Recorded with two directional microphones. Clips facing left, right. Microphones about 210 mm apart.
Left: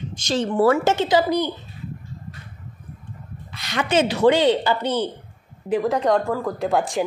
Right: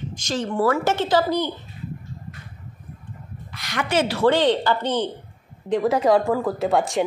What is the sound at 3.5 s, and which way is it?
A woman's voice, 25° left (ahead or behind).